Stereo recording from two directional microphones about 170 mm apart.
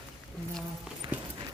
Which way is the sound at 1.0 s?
30° right (ahead or behind).